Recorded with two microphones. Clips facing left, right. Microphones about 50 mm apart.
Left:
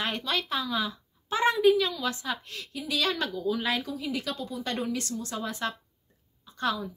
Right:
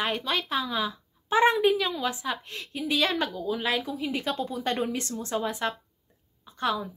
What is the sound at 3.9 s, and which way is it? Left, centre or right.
A woman's voice, right.